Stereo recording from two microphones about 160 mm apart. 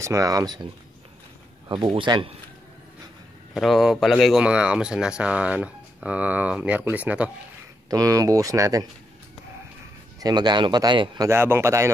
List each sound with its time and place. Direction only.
0.0 s speech: 20° right (ahead or behind)
1.7 s a man's voice: 30° right (ahead or behind)
3.5 s speech: centre (ahead or behind)
7.9 s speech: 20° right (ahead or behind)
10.2 s speech: 25° right (ahead or behind)
11.2 s speech: 15° right (ahead or behind)